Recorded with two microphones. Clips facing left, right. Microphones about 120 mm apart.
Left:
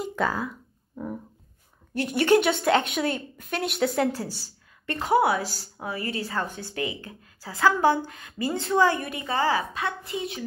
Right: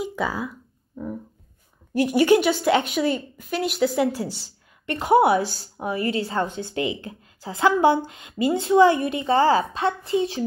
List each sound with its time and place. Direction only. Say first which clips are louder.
0.0 s a sound: right 1 dB; 5° right (ahead or behind)
2.0 s a woman's voice: right 2 dB; 5° right (ahead or behind)
4.2 s a woman's voice: right 4 dB; 25° right (ahead or behind)